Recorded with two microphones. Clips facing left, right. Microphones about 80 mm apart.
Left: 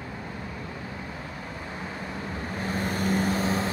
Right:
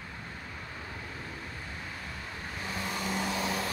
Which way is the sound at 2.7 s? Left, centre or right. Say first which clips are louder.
Left 7 dB; left.